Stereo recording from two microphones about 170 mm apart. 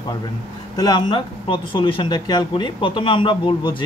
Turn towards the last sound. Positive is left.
turn(degrees=30)  # may be behind; listen again after turning